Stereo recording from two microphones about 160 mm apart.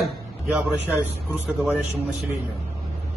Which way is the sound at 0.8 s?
10° right (ahead or behind).